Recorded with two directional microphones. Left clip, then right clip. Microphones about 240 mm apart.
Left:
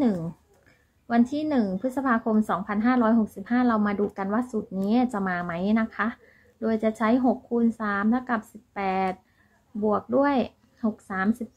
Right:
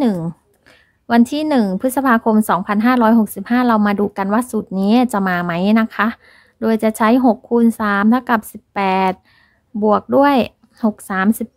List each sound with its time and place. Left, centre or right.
0.7 s a woman's voice: right